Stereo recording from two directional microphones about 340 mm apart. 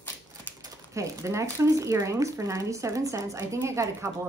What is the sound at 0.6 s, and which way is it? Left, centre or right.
Speech, centre.